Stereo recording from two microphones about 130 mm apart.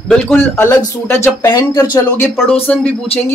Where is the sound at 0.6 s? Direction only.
20° left (ahead or behind).